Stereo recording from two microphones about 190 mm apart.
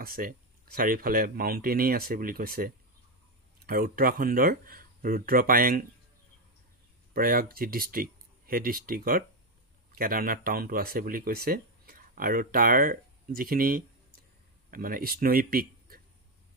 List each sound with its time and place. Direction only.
0.0 s speech: 50° right (ahead or behind)
7.2 s speech: 50° right (ahead or behind)